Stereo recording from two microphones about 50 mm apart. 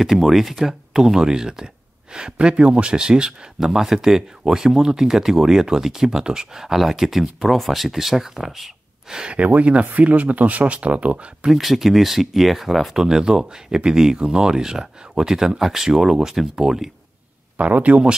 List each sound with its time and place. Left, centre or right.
0.0 s speech: centre
3.5 s speech: centre
9.2 s speech: right
11.5 s speech: centre
13.0 s speech: centre
17.6 s speech: right